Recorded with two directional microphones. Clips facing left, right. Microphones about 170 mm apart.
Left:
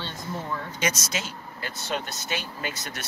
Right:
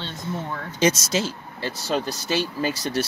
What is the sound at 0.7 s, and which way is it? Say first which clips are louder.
Speech: right 11 dB; 30° right (ahead or behind).